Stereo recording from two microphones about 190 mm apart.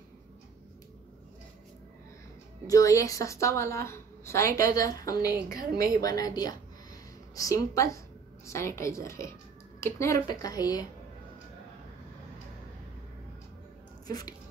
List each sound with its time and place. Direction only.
2.6 s a woman's voice: 15° left (ahead or behind)
5.5 s a woman's voice: 50° right (ahead or behind)
6.0 s a woman's voice: 20° left (ahead or behind)
14.0 s speech: 20° left (ahead or behind)